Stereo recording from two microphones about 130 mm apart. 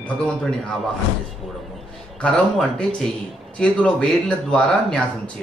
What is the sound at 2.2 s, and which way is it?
A man's voice, 10° left (ahead or behind).